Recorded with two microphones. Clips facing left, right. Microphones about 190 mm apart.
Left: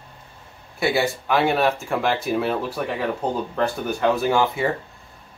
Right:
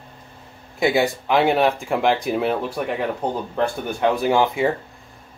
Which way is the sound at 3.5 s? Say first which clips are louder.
Even; 15° right (ahead or behind).